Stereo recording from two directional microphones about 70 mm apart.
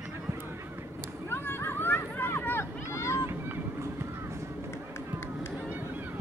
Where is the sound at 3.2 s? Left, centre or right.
Right.